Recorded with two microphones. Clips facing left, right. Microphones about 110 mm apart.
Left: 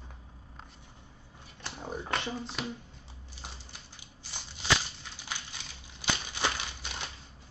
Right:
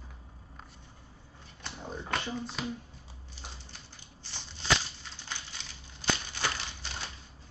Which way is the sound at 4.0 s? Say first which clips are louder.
Left 2 dB; 10° left (ahead or behind).